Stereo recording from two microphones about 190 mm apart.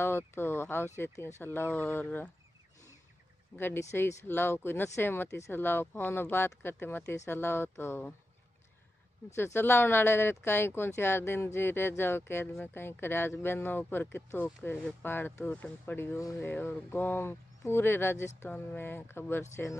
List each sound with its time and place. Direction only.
0.0 s speech: 10° left (ahead or behind)
3.5 s speech: 10° left (ahead or behind)
9.3 s speech: 15° left (ahead or behind)